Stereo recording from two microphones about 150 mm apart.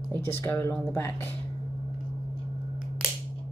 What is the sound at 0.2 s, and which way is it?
Speech, 15° left (ahead or behind).